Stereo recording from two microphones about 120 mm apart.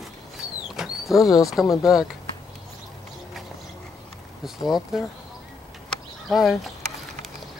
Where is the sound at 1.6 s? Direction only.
30° left (ahead or behind).